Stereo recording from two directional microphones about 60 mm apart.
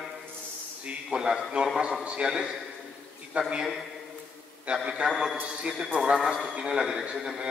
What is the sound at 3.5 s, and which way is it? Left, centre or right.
A man's voice, centre.